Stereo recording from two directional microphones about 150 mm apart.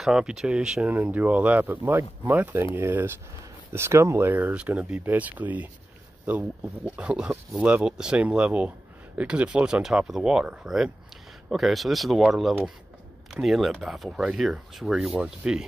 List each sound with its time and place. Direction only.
0.0 s speech: 5° right (ahead or behind)